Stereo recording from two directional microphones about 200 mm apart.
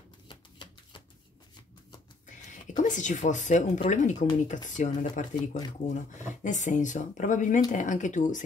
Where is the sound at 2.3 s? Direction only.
40° left (ahead or behind).